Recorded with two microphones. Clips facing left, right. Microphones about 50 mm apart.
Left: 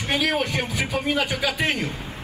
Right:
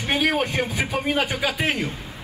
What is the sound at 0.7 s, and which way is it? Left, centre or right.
Speech, right.